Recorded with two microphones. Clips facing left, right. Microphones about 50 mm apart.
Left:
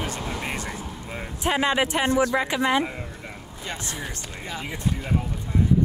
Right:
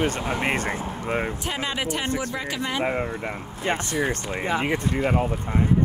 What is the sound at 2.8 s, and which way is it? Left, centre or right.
Speech, right.